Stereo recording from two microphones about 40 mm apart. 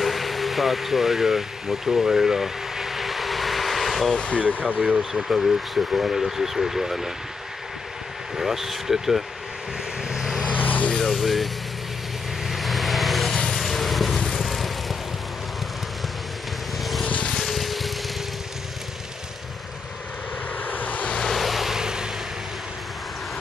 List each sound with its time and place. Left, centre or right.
0.0 s vehicle: centre
4.7 s speech: centre
5.1 s speech: centre
8.4 s speech: centre
10.0 s vehicle: centre
10.5 s vehicle: left
11.1 s speech: centre
12.4 s vehicle: centre
17.4 s vehicle: centre
20.6 s vehicle: left
21.2 s vehicle: centre